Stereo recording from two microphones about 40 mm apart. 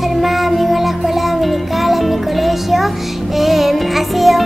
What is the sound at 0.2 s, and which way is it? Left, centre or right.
Music, centre.